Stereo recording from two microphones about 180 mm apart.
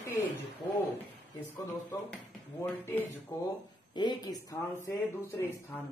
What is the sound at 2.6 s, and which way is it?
Speech, 10° left (ahead or behind).